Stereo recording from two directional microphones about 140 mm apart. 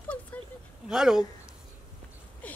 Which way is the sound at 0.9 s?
5° right (ahead or behind).